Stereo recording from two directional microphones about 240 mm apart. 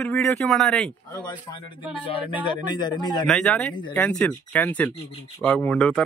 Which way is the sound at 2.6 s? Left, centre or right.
Centre.